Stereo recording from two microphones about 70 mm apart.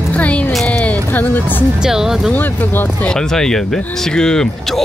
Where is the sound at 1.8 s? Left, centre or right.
Centre.